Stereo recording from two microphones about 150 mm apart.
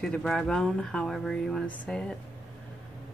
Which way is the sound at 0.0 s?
5° left (ahead or behind).